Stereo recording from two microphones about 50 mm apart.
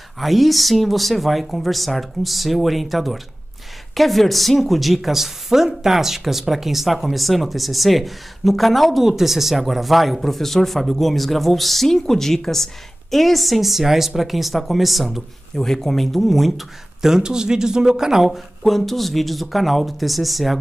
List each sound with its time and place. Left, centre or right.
0.2 s speech: centre
15.5 s speech: centre
18.6 s speech: centre